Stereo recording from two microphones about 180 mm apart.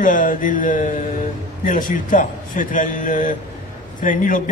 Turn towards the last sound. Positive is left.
turn(degrees=45)  # may be behind; listen again after turning